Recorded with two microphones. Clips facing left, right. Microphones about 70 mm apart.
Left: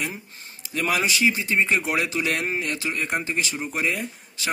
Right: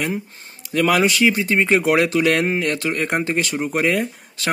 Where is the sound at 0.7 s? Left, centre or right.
Right.